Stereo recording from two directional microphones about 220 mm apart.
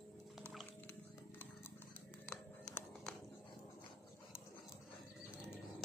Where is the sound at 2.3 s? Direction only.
5° left (ahead or behind).